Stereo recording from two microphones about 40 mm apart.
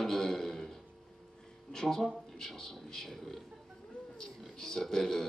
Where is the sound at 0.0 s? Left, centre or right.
Centre.